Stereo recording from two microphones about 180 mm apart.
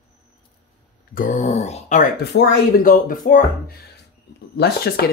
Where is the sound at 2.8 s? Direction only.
50° left (ahead or behind).